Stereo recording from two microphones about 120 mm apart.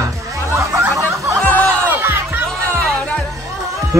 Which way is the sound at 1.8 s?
20° right (ahead or behind).